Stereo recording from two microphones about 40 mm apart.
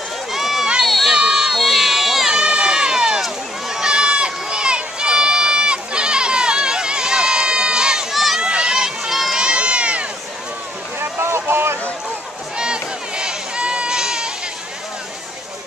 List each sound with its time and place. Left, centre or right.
0.3 s run: centre
0.8 s crowd: centre
1.1 s baby cry: right
1.6 s crowd: centre
2.4 s run: right
3.2 s run: centre
3.8 s run: right
8.1 s crowd: centre
8.4 s a sound: right
8.7 s run: centre
9.4 s run: right
11.0 s a sound: right
12.5 s a sound: right